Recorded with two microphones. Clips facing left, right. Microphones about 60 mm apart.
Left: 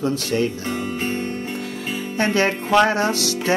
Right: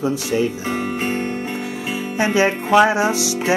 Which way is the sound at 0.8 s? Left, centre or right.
Right.